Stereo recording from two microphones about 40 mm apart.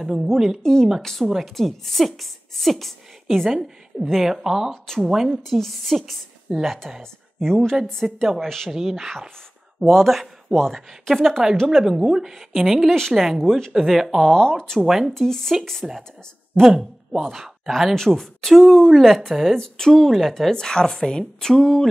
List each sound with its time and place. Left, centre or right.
0.0 s a woman's voice: centre
0.6 s speech: centre
3.5 s a woman's voice: centre
5.4 s speech: centre
8.6 s speech: centre
11.6 s a woman's voice: centre
13.7 s speech: centre
14.3 s speech: centre
14.9 s a woman's voice: centre
15.1 s speech: centre
17.2 s speech: centre
19.5 s speech: centre
19.9 s speech: centre
20.5 s speech: centre